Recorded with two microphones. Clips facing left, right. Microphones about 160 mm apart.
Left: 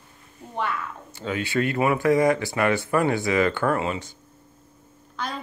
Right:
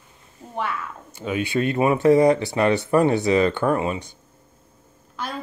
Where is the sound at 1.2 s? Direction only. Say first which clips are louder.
Right 2 dB; 20° right (ahead or behind).